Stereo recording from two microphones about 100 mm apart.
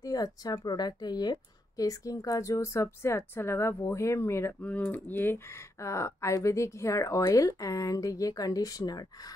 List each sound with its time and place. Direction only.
0.0 s speech: 40° left (ahead or behind)
4.6 s speech: 15° left (ahead or behind); by 9.3 s 40° left (ahead or behind)